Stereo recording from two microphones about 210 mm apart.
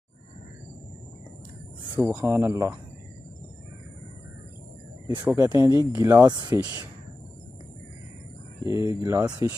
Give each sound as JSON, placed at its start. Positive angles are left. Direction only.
{"t": 2.0, "sound": "speech", "side_deg": -10}
{"t": 5.2, "sound": "speech", "side_deg": -15}
{"t": 8.6, "sound": "speech", "side_deg": -15}